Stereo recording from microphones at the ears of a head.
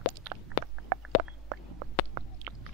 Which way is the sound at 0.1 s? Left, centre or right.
Right.